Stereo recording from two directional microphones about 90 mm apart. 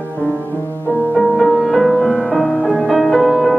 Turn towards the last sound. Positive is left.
turn(degrees=0)  # may be behind; listen again after turning